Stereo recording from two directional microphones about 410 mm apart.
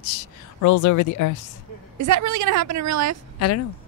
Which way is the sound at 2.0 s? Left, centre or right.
Right.